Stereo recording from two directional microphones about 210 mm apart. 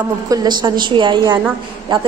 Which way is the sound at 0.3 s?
20° right (ahead or behind).